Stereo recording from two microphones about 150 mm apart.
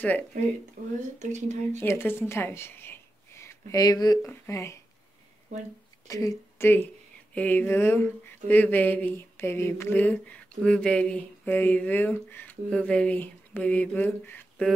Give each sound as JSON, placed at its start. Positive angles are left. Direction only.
{"t": 1.2, "sound": "speech", "side_deg": -50}
{"t": 1.8, "sound": "speech", "side_deg": 15}
{"t": 6.0, "sound": "a woman's voice", "side_deg": 20}